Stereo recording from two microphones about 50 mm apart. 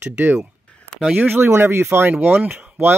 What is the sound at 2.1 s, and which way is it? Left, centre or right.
Speech, right.